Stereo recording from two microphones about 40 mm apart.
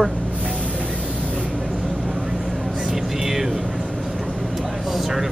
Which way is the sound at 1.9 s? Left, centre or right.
Centre.